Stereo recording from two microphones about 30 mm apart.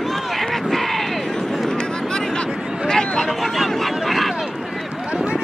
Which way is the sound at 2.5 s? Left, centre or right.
Right.